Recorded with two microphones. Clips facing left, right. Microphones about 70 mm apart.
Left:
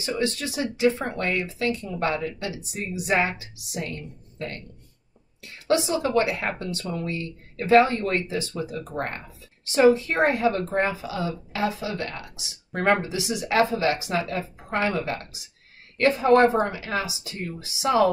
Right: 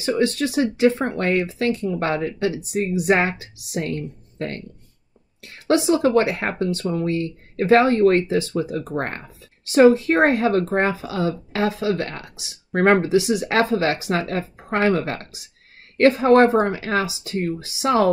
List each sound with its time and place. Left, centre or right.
0.0 s speech: right
16.8 s speech: right